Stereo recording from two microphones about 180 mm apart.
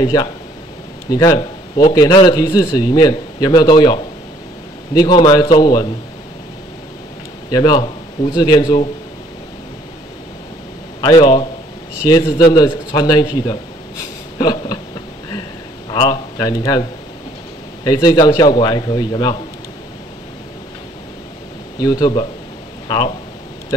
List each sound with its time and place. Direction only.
0.0 s a man's voice: 25° left (ahead or behind)
7.5 s a man's voice: 25° left (ahead or behind)
11.0 s a man's voice: 25° left (ahead or behind)
15.9 s speech: 25° left (ahead or behind)
17.8 s a man's voice: 20° left (ahead or behind)
21.8 s a man's voice: 20° left (ahead or behind)